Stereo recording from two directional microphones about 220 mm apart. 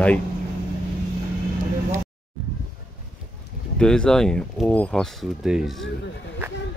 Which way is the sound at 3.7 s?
5° left (ahead or behind).